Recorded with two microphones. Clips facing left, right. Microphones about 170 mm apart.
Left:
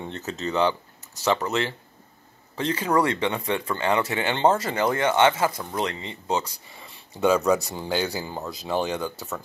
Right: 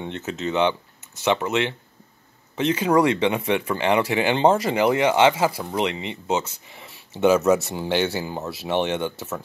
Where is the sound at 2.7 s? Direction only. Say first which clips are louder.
Right 4 dB; 10° right (ahead or behind).